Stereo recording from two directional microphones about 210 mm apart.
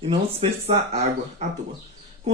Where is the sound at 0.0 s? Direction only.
25° right (ahead or behind).